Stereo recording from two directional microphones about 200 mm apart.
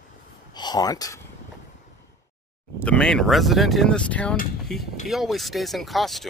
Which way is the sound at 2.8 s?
5° left (ahead or behind).